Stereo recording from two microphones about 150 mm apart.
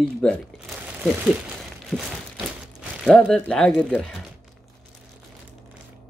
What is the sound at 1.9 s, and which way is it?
A man's voice, 5° left (ahead or behind).